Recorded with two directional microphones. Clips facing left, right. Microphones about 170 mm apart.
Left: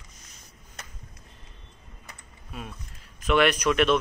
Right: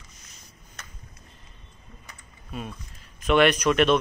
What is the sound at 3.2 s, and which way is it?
Speech, 5° left (ahead or behind).